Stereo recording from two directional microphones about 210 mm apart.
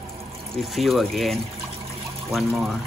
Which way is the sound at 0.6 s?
Centre (ahead or behind).